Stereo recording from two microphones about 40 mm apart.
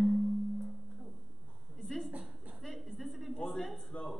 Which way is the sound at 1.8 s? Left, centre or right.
Centre.